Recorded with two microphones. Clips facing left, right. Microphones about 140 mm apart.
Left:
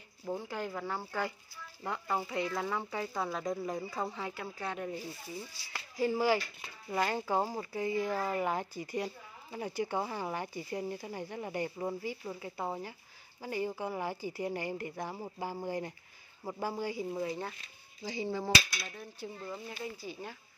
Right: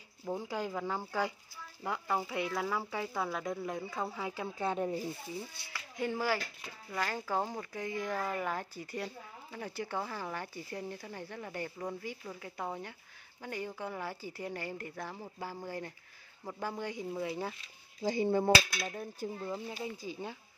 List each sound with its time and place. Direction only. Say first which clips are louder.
0.2 s speech: right 1 dB; 10° right (ahead or behind)
1.8 s speech: right 1 dB; centre (ahead or behind); by 4.7 s 20° right (ahead or behind)
4.7 s speech: right 4 dB; 35° right (ahead or behind)
5.6 s speech: right 2 dB; 55° right (ahead or behind)
5.9 s speech: left 4 dB; 10° left (ahead or behind)
17.3 s speech: right 1 dB; 5° right (ahead or behind)
18.0 s speech: right 6 dB; 50° right (ahead or behind)
19.8 s speech: right 2 dB; 20° right (ahead or behind)